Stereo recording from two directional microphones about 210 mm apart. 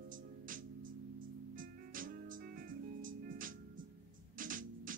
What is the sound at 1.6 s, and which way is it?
Music, 40° right (ahead or behind).